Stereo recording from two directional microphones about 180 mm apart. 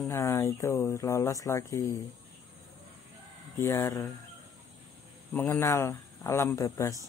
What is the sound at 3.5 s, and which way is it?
Speech, 15° left (ahead or behind).